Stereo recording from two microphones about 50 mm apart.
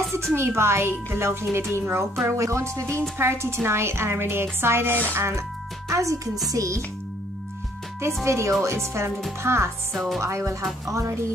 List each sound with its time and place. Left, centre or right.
0.3 s a woman's voice: right
3.0 s a woman's voice: right
5.9 s music: right
8.2 s a woman's voice: right
9.9 s music: centre
10.2 s speech: right